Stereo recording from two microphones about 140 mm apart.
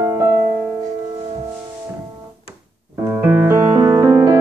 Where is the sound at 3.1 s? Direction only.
15° right (ahead or behind).